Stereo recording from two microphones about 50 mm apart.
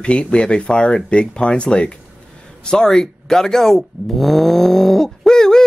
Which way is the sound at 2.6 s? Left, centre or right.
Centre.